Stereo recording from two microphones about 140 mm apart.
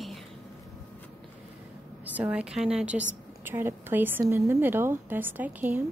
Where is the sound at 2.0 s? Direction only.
10° right (ahead or behind).